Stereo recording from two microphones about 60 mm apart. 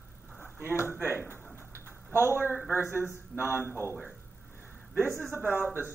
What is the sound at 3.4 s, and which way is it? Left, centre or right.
Speech, right.